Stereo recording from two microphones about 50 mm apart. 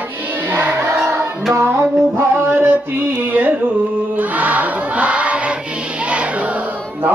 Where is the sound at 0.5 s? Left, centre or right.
Right.